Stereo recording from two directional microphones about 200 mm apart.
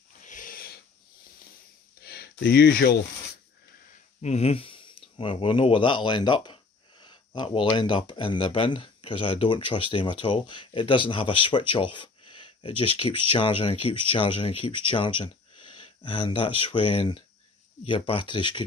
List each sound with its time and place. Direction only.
0.2 s wheeze: 40° left (ahead or behind)
2.0 s a sound: 55° left (ahead or behind)
4.2 s speech: 30° left (ahead or behind)